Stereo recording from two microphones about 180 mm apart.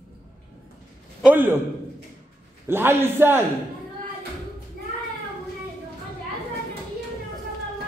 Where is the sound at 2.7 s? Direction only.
10° right (ahead or behind).